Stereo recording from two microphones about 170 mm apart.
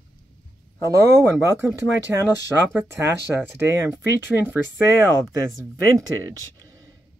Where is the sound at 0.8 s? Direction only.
15° right (ahead or behind).